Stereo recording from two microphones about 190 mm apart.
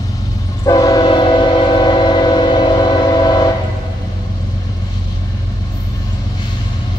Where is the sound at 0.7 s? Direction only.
20° left (ahead or behind).